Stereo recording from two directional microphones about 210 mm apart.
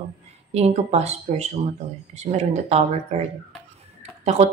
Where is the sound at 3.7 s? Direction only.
30° right (ahead or behind).